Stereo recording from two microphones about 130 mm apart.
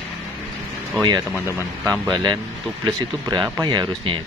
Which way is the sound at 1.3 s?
20° left (ahead or behind).